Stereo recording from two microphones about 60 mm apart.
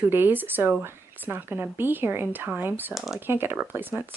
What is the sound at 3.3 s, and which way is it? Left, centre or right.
Speech, right.